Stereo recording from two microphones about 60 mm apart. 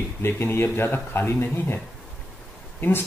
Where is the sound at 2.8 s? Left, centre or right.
Left.